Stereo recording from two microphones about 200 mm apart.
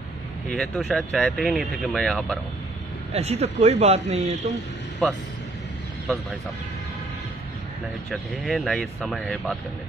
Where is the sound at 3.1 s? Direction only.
30° right (ahead or behind).